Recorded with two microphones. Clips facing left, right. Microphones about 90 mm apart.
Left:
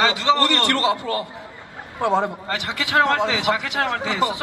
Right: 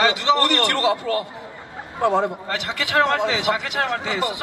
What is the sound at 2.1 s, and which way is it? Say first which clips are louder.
A man's voice: even; 20° left (ahead or behind).